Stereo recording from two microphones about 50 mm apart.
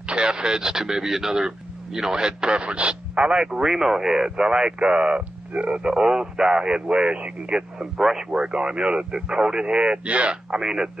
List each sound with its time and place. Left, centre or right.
0.0 s speech: centre
10.5 s speech: centre